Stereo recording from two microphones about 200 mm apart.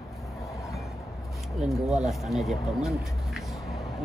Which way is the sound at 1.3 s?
Centre (ahead or behind).